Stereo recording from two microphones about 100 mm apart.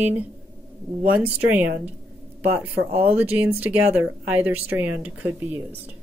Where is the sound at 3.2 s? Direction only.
15° right (ahead or behind).